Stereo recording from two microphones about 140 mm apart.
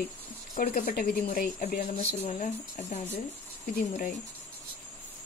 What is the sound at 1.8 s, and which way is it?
Speech, 50° left (ahead or behind).